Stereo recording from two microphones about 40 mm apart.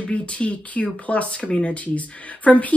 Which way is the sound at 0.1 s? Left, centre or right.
Left.